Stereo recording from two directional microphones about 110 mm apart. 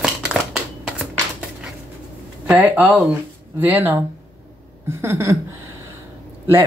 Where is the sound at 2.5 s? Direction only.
15° right (ahead or behind).